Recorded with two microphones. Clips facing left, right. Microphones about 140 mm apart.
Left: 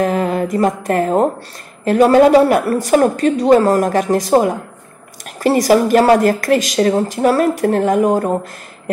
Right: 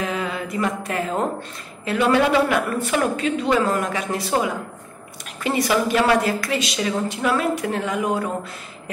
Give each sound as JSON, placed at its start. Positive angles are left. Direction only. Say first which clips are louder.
{"t": 0.0, "sound": "a woman's voice", "louder": "left 10 dB", "side_deg": 45}